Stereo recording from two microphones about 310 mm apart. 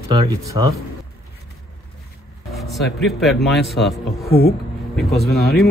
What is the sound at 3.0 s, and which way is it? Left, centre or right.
Speech, centre.